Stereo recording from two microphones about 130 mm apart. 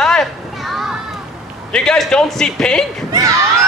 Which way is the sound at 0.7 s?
5° right (ahead or behind).